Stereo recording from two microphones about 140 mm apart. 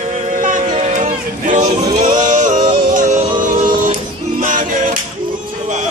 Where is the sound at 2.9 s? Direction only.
60° right (ahead or behind).